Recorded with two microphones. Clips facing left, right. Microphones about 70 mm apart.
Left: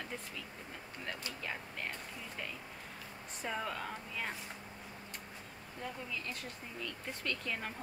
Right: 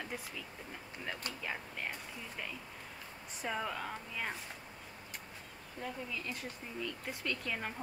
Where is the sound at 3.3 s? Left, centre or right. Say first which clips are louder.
Right 1 dB; centre.